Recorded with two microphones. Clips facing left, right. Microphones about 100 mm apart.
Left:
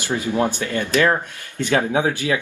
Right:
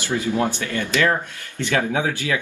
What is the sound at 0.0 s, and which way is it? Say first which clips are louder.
Speech: left 1 dB; 15° left (ahead or behind).